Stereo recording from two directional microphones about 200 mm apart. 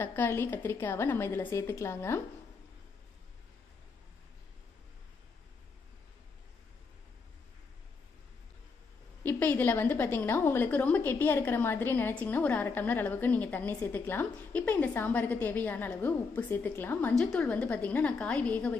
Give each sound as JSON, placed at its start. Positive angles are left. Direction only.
{"t": 0.0, "sound": "a woman's voice", "side_deg": 10}
{"t": 9.2, "sound": "a woman's voice", "side_deg": 10}